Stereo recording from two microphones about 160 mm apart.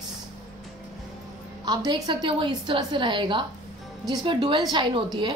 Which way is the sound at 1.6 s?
25° right (ahead or behind).